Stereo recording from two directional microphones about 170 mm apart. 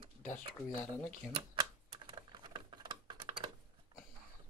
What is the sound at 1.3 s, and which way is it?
Typewriter, 30° right (ahead or behind).